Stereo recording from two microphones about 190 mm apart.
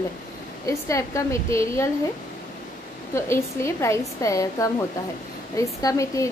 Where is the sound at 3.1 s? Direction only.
15° left (ahead or behind).